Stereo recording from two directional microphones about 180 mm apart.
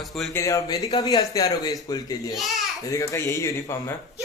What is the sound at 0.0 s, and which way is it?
Speech, centre (ahead or behind).